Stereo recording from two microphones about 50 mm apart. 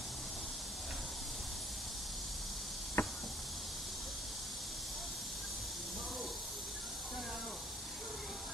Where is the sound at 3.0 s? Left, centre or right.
Left.